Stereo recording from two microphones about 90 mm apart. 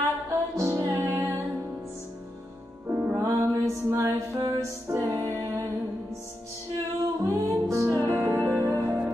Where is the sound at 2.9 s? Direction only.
15° right (ahead or behind).